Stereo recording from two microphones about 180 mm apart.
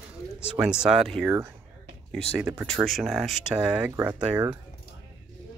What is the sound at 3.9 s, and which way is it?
Speech, 15° right (ahead or behind).